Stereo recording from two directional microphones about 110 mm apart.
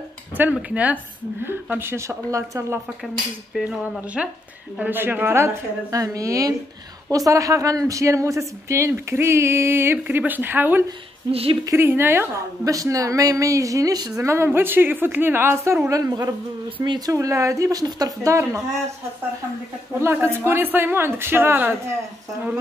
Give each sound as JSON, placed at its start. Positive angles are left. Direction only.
{"t": 0.4, "sound": "a woman's voice", "side_deg": -10}
{"t": 3.5, "sound": "speech", "side_deg": -5}
{"t": 4.7, "sound": "a woman's voice", "side_deg": -15}
{"t": 16.6, "sound": "speech", "side_deg": -50}
{"t": 17.1, "sound": "a woman's voice", "side_deg": -25}
{"t": 20.0, "sound": "a woman's voice", "side_deg": -20}